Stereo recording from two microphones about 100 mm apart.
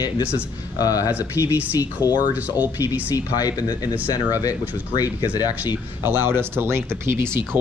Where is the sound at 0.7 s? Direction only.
40° left (ahead or behind).